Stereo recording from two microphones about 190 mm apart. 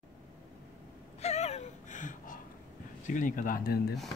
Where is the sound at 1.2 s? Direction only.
35° left (ahead or behind).